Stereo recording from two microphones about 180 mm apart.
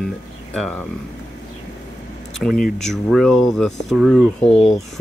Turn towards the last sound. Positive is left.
turn(degrees=35)  # may be behind; listen again after turning